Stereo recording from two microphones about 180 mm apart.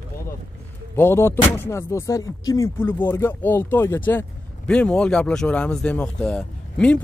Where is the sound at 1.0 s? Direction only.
15° left (ahead or behind).